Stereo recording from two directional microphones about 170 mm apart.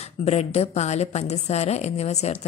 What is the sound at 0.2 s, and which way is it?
A woman's voice, 40° left (ahead or behind).